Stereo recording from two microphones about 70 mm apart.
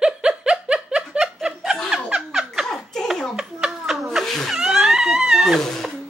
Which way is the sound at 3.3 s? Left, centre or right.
Centre.